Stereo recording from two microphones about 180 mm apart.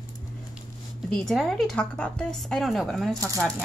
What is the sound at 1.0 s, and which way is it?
Speech, 5° left (ahead or behind).